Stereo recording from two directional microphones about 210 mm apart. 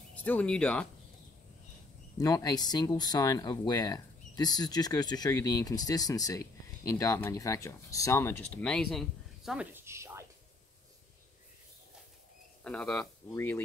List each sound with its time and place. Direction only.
0.1 s speech: 10° left (ahead or behind)
2.1 s speech: 15° left (ahead or behind); by 10.2 s 10° right (ahead or behind)
12.6 s speech: 5° left (ahead or behind)